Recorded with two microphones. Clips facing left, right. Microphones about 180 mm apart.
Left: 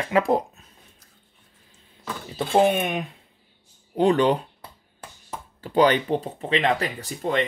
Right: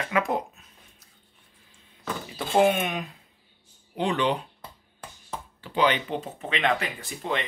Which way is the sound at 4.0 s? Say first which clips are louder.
Left 7 dB; 40° left (ahead or behind).